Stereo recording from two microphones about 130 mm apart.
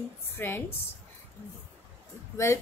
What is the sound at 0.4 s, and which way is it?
Speech, 15° left (ahead or behind).